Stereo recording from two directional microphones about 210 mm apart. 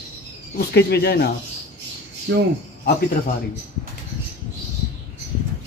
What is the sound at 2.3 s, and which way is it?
Speech, 55° right (ahead or behind).